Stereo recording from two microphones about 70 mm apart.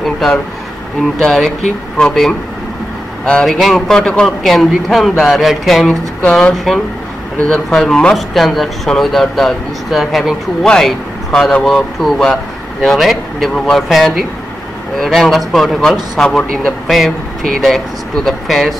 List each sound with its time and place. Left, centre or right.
0.0 s a sound: centre
1.2 s speech: centre
3.4 s speech: centre
7.4 s speech: centre
16.2 s speech: centre